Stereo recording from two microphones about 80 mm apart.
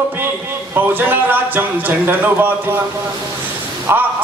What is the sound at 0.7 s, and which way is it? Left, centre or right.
A man's voice, right.